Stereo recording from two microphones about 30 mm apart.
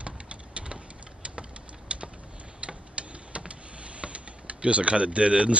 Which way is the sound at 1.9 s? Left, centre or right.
Right.